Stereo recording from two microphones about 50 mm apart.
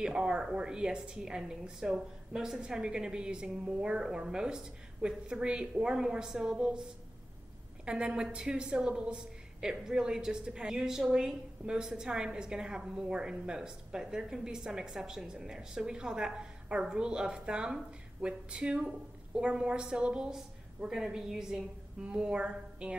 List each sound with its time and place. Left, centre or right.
0.0 s a woman's voice: centre